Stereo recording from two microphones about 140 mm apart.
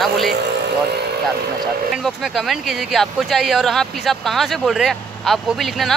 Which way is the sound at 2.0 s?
Centre (ahead or behind).